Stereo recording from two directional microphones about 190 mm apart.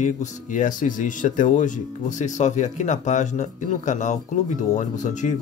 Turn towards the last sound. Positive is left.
turn(degrees=40)  # may be behind; listen again after turning